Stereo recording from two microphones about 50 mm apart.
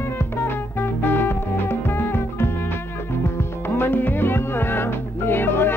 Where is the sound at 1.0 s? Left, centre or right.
Left.